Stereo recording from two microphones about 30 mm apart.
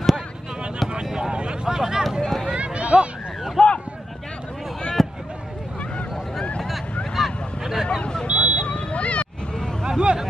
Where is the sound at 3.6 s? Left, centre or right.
Centre.